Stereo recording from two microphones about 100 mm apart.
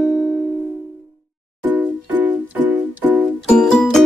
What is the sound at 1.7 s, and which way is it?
Music, 15° right (ahead or behind).